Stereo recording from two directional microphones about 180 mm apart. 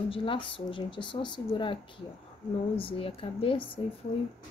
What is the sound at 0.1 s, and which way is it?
Speech, 30° left (ahead or behind).